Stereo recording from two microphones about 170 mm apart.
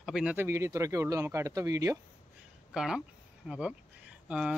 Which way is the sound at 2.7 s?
5° right (ahead or behind).